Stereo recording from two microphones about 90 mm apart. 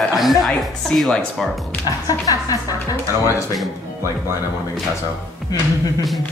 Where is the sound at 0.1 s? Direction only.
Centre (ahead or behind).